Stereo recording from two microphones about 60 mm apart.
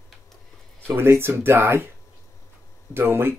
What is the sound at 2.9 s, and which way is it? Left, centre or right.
Speech, right.